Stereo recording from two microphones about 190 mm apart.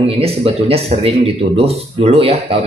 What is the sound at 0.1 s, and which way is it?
A man's voice, 30° right (ahead or behind).